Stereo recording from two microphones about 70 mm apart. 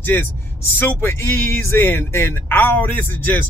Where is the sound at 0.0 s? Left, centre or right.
Left.